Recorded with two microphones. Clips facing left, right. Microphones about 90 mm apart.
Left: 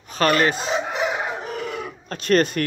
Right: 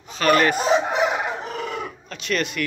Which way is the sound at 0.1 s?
35° left (ahead or behind).